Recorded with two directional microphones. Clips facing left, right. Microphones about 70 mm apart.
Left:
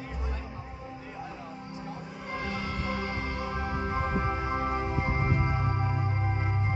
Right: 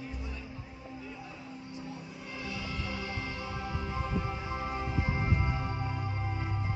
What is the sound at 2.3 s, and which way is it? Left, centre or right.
Music, left.